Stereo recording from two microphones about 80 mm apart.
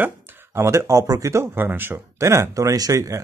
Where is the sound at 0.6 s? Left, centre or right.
Right.